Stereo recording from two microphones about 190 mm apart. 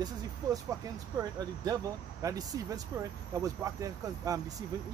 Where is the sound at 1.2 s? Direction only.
20° right (ahead or behind).